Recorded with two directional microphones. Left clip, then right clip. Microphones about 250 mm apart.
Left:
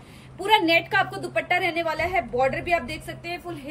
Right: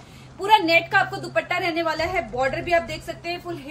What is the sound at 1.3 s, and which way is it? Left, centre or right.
A woman's voice, centre.